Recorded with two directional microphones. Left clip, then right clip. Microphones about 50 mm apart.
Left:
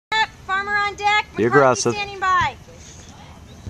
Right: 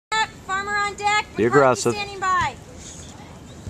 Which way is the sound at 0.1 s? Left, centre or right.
Left.